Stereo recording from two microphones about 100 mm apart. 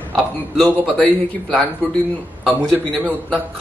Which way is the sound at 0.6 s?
10° left (ahead or behind).